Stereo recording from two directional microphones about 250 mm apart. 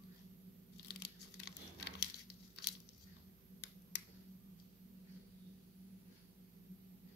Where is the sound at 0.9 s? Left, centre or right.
Left.